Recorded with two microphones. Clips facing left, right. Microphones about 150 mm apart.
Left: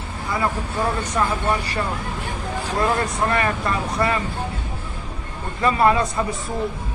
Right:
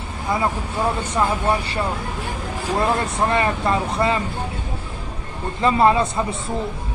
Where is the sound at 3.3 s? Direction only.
25° right (ahead or behind).